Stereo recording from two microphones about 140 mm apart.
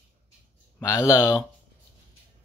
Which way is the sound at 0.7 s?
20° left (ahead or behind).